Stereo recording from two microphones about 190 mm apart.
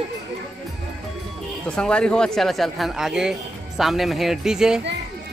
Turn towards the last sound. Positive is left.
turn(degrees=-5)  # may be behind; listen again after turning